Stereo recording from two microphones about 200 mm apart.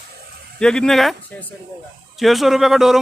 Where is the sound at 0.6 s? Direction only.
Centre (ahead or behind).